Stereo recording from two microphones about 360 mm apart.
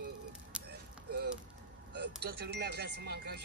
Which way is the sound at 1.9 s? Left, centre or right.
Right.